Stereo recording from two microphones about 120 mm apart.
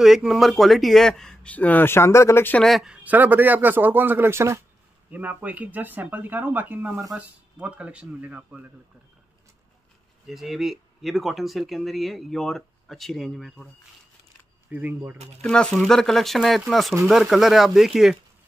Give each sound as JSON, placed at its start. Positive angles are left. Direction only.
{"t": 0.0, "sound": "speech", "side_deg": -5}
{"t": 2.6, "sound": "speech", "side_deg": 0}
{"t": 10.2, "sound": "speech", "side_deg": 0}
{"t": 14.7, "sound": "speech", "side_deg": -15}
{"t": 15.4, "sound": "speech", "side_deg": 5}